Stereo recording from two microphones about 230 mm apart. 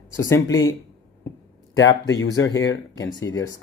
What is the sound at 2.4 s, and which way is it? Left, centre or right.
Speech, left.